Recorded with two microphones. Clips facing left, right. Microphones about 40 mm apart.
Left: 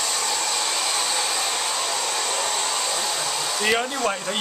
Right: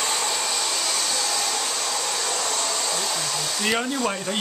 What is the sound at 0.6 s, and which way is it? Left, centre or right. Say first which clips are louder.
Hair dryer: left 1 dB; centre.